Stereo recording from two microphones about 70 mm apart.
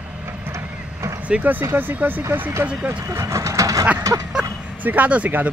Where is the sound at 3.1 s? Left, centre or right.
Right.